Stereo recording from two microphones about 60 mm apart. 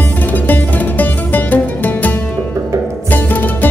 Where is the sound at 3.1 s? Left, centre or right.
Left.